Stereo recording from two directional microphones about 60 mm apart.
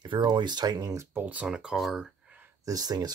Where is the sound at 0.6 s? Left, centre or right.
Right.